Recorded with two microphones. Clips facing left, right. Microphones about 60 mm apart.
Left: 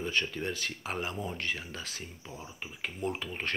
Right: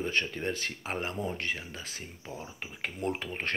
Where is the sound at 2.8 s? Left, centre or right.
Right.